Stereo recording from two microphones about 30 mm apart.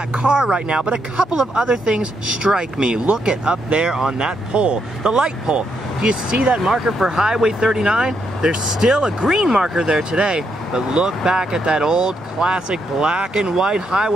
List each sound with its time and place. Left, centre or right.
0.1 s speech: right
3.9 s speech: centre
4.6 s speech: right
6.6 s speech: centre
7.1 s speech: right
9.8 s speech: right
10.7 s speech: right
12.4 s speech: right
13.3 s speech: right